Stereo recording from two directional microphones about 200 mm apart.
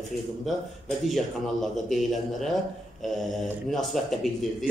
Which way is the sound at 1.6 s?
Centre (ahead or behind).